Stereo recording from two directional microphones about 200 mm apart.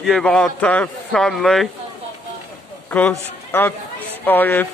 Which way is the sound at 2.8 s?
10° left (ahead or behind).